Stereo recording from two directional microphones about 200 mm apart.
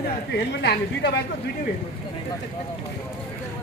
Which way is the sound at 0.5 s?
55° left (ahead or behind).